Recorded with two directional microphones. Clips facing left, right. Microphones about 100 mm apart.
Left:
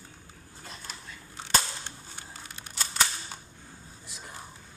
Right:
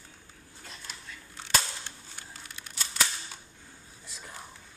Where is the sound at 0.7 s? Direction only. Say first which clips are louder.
Left 2 dB; 40° left (ahead or behind).